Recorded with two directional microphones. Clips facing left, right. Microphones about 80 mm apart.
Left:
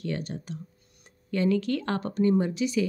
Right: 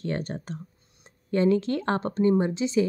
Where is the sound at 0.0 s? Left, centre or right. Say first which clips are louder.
Right 2 dB; right.